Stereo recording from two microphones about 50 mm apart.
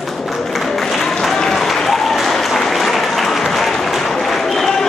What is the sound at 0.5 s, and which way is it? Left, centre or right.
Applause, centre.